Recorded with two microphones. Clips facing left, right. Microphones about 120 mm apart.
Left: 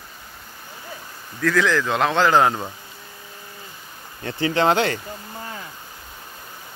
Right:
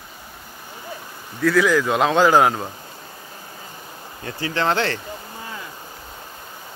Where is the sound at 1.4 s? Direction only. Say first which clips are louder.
Right 3 dB; 5° right (ahead or behind).